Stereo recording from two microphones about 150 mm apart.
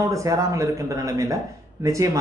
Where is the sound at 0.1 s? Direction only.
20° right (ahead or behind).